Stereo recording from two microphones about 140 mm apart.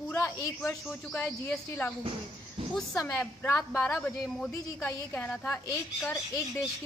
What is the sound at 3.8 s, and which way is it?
Speech, centre (ahead or behind).